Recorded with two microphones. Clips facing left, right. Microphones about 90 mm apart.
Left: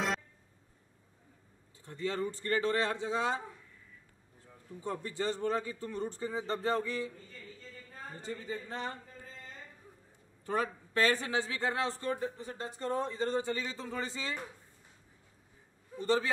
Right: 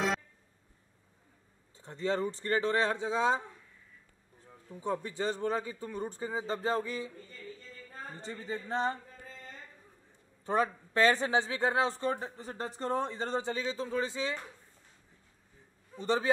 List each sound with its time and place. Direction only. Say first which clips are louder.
1.8 s a man's voice: right 3 dB; 25° right (ahead or behind)
4.7 s speech: right 3 dB; 20° right (ahead or behind)
8.2 s speech: even; 30° right (ahead or behind)
10.4 s a man's voice: right 4 dB; 30° right (ahead or behind)
12.1 s speech: even; 35° right (ahead or behind)
13.4 s a man's voice: right 2 dB; 20° right (ahead or behind)
16.0 s a man's voice: left 1 dB; 20° right (ahead or behind)